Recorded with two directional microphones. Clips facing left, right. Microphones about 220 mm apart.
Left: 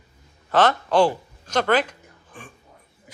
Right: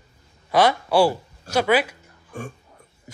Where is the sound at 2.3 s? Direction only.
45° right (ahead or behind).